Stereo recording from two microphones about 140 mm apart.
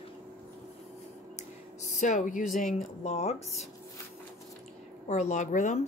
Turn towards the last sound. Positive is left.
turn(degrees=60)  # may be behind; listen again after turning